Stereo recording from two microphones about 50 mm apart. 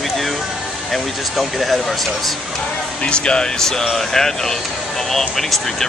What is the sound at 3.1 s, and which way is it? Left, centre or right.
Speech, centre.